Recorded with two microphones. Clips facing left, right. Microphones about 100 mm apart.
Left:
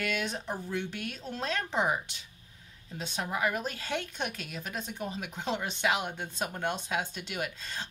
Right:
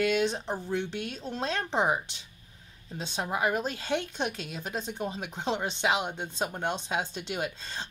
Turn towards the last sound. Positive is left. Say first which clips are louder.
# right 2 dB
turn(degrees=-30)  # may be behind; listen again after turning